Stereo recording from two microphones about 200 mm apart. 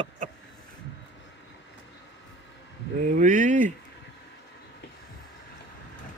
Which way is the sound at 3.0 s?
40° right (ahead or behind).